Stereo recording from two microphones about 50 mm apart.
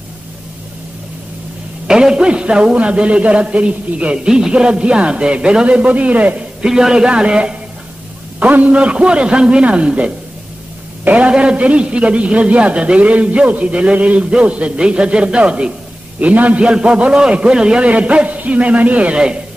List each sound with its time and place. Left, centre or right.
1.9 s a man's voice: centre
6.6 s a man's voice: centre
8.4 s a man's voice: right